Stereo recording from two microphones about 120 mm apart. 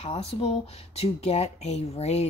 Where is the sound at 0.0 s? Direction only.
55° left (ahead or behind).